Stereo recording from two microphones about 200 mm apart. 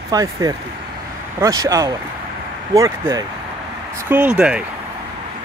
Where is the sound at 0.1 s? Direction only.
20° right (ahead or behind).